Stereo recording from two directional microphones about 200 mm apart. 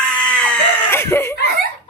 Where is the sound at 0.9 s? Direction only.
10° left (ahead or behind).